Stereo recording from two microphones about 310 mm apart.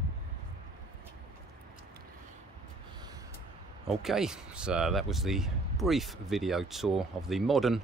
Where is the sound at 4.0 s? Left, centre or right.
Centre.